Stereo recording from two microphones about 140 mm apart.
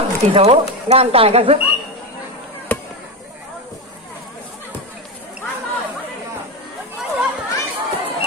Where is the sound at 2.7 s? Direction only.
15° left (ahead or behind).